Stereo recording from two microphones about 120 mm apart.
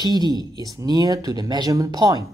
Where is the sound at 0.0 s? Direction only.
35° right (ahead or behind).